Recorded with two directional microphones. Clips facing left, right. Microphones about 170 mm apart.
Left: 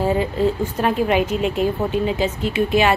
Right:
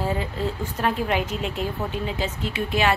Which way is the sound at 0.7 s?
10° left (ahead or behind).